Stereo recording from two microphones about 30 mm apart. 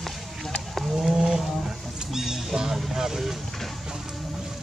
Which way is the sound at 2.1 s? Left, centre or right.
Centre.